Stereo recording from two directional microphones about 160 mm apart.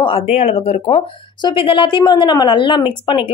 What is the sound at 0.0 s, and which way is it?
Speech, 40° left (ahead or behind).